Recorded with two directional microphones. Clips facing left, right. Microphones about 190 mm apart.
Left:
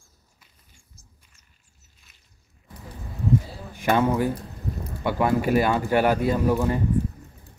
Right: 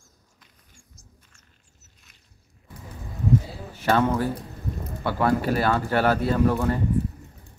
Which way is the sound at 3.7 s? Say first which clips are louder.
Even; 15° left (ahead or behind).